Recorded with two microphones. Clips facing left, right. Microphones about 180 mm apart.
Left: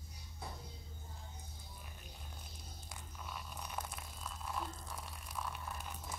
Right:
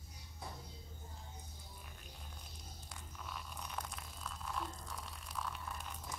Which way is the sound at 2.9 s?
5° left (ahead or behind).